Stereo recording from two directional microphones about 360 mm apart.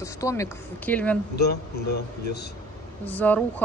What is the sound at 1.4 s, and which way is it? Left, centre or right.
Speech, left.